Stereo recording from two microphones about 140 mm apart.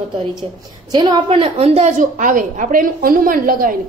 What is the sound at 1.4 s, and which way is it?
A woman's voice, 45° right (ahead or behind).